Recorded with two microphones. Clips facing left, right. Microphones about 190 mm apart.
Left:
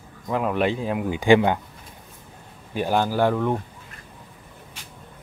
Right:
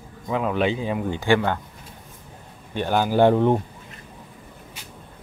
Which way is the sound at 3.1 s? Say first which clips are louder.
Right 5 dB; 25° right (ahead or behind).